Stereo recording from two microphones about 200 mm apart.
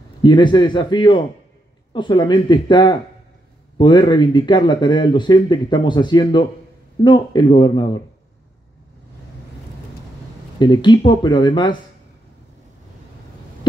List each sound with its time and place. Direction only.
0.2 s speech: 20° left (ahead or behind)
10.6 s speech: 20° left (ahead or behind)